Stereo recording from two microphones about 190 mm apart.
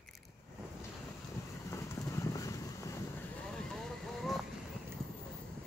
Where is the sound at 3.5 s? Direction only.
Centre (ahead or behind).